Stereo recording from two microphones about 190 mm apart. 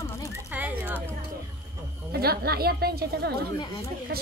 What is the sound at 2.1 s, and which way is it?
A woman's voice, 55° right (ahead or behind).